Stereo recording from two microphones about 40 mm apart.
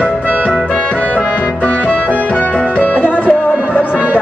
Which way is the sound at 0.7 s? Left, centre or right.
Left.